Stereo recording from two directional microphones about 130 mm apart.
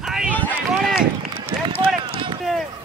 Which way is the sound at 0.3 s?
10° left (ahead or behind).